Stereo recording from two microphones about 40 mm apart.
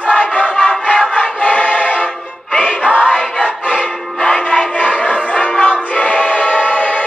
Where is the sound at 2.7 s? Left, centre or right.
Right.